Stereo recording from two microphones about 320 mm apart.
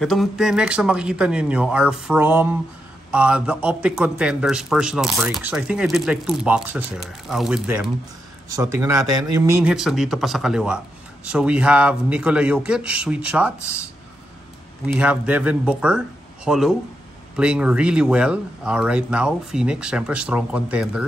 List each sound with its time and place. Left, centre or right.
0.0 s a man's voice: centre
15.0 s a man's voice: centre